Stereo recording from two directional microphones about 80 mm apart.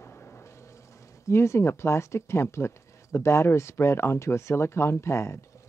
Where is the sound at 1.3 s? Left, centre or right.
Left.